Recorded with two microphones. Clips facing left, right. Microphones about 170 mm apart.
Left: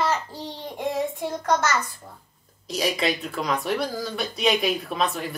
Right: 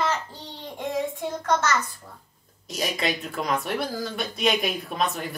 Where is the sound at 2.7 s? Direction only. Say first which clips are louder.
Left 3 dB; centre (ahead or behind).